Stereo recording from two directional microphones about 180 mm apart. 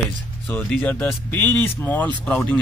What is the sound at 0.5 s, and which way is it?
Speech, 5° left (ahead or behind).